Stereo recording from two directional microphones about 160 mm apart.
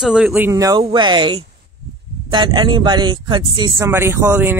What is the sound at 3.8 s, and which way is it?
Speech, 15° right (ahead or behind).